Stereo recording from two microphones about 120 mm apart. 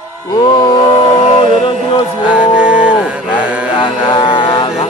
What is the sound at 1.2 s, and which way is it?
Music, 50° left (ahead or behind).